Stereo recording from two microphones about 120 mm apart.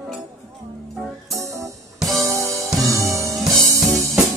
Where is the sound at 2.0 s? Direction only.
Centre (ahead or behind).